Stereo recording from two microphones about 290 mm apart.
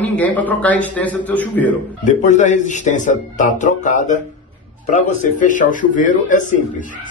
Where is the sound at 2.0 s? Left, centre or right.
Left.